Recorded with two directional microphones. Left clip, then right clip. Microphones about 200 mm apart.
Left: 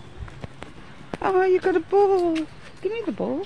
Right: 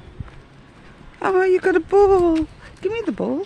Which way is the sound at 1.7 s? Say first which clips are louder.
Right 4 dB; 40° right (ahead or behind).